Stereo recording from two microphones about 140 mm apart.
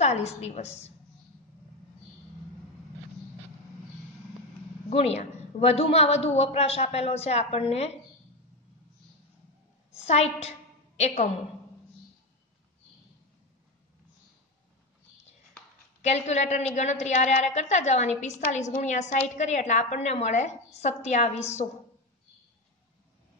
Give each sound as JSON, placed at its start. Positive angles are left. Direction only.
{"t": 0.0, "sound": "a woman's voice", "side_deg": 50}
{"t": 4.8, "sound": "a woman's voice", "side_deg": 50}
{"t": 9.9, "sound": "a woman's voice", "side_deg": 50}
{"t": 16.0, "sound": "a woman's voice", "side_deg": 55}